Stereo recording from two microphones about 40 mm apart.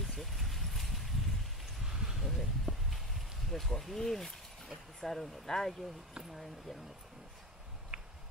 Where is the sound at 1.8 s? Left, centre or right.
Centre.